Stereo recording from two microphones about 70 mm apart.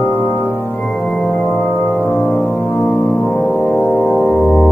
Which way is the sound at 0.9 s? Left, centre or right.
Centre.